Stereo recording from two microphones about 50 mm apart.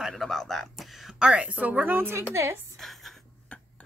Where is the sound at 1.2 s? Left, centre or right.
Right.